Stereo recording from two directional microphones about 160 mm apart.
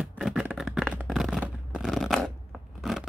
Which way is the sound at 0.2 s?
5° right (ahead or behind).